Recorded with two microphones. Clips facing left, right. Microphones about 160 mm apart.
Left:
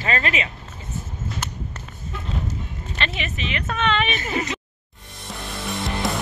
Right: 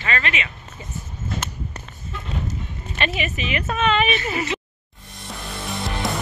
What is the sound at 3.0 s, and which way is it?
Speech, 10° right (ahead or behind).